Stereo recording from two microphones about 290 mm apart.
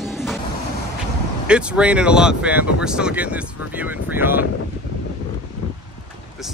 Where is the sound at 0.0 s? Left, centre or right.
Centre.